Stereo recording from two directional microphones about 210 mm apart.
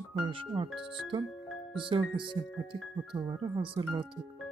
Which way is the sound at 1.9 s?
25° right (ahead or behind).